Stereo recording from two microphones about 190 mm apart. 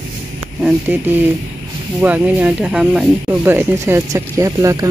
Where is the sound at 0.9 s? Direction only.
10° right (ahead or behind).